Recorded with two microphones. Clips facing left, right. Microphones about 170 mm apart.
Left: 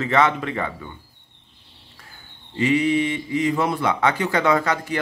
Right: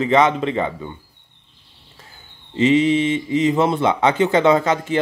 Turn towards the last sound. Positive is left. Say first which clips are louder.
# right 4 dB
turn(degrees=-20)  # may be behind; listen again after turning